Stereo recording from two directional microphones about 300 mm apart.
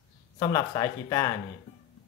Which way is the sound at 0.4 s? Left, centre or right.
Centre.